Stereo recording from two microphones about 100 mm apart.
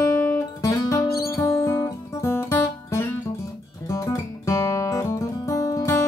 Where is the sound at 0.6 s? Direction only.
35° left (ahead or behind).